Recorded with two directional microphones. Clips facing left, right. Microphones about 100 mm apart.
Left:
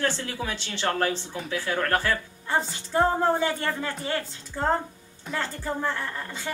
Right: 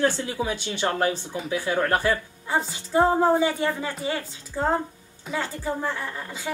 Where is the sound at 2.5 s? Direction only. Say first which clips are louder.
Right 2 dB; 5° right (ahead or behind).